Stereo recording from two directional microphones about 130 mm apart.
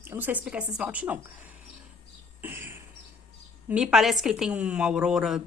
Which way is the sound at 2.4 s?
20° right (ahead or behind).